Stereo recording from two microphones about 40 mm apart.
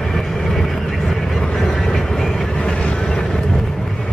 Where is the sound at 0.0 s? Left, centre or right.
Centre.